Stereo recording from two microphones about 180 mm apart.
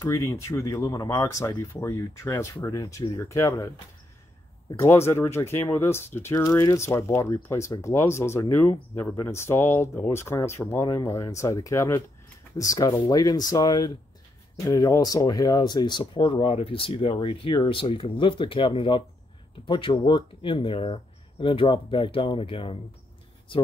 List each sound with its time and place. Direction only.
0.0 s speech: 15° left (ahead or behind)